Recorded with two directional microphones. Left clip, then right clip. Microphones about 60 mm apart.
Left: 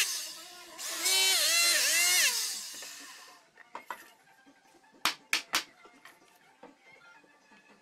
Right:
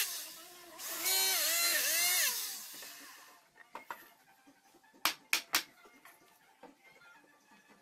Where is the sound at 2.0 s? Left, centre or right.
Left.